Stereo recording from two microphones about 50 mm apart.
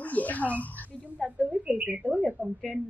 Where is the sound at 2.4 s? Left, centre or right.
Left.